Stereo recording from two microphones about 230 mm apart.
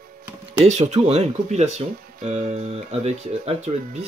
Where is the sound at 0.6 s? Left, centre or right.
Right.